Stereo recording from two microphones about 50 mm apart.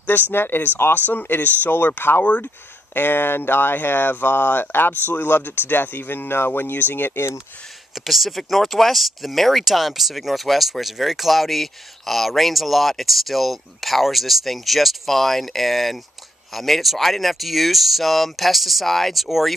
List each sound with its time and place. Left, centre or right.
0.3 s speech: left
7.9 s speech: centre